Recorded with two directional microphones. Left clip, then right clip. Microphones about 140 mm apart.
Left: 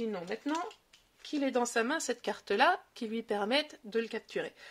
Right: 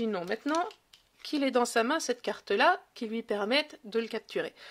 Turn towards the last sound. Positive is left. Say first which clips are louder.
# right 3 dB
turn(degrees=-25)  # may be behind; listen again after turning